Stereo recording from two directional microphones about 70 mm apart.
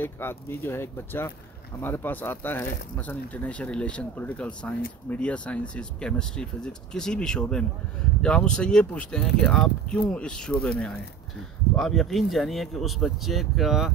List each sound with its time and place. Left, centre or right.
0.0 s speech: left; by 9.5 s centre
9.5 s speech: centre
10.0 s speech: centre
11.7 s speech: centre